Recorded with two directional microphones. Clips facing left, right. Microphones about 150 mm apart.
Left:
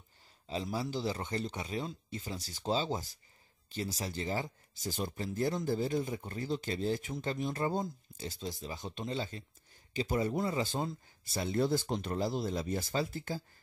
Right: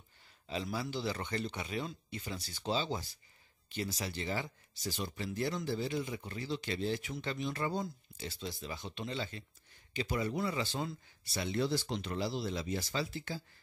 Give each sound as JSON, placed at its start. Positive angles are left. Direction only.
{"t": 0.7, "sound": "speech", "side_deg": 40}